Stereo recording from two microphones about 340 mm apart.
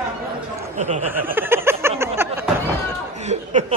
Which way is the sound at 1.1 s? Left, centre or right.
Centre.